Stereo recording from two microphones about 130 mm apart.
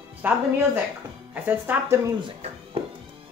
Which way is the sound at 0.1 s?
10° right (ahead or behind).